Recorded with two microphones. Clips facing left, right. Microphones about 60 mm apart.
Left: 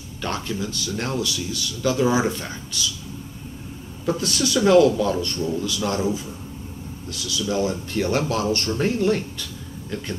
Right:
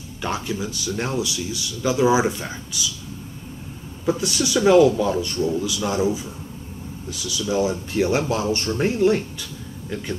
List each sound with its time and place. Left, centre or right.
0.2 s speech: centre
4.0 s speech: centre